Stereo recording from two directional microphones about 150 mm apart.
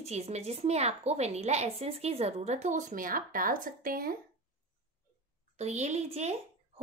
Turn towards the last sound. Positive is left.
turn(degrees=-45)  # may be behind; listen again after turning